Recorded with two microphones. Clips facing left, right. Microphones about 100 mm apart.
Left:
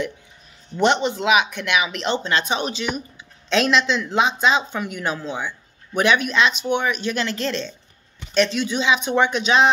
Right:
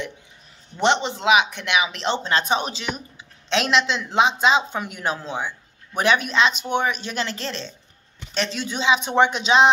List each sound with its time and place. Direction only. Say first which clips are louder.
0.7 s speech: left 2 dB; 25° right (ahead or behind)
3.4 s speech: left 2 dB; 25° right (ahead or behind)